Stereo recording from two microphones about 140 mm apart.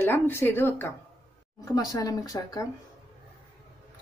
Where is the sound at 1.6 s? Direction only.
25° left (ahead or behind).